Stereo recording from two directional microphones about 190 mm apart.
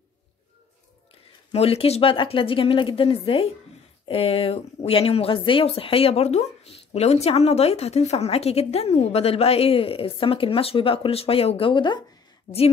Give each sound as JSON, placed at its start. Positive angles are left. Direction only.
{"t": 1.5, "sound": "a woman's voice", "side_deg": 30}